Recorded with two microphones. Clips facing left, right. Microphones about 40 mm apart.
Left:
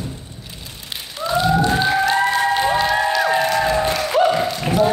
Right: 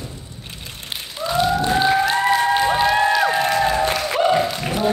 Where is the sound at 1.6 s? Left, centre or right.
Centre.